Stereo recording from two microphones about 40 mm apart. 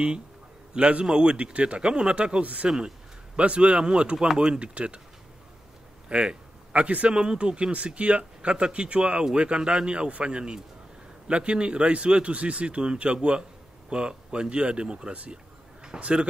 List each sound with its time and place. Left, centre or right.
0.7 s a man's voice: right
2.4 s a man's voice: right
6.0 s a man's voice: right